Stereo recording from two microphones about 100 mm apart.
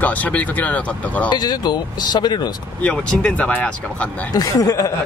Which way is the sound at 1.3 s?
45° left (ahead or behind).